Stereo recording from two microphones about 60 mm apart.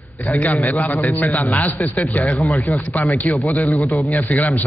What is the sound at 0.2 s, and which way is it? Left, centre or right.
A man's voice, left.